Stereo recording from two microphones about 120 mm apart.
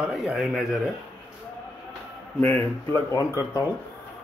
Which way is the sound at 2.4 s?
20° left (ahead or behind).